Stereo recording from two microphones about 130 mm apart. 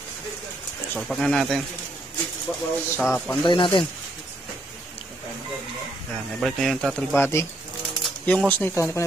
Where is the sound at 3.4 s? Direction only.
40° left (ahead or behind).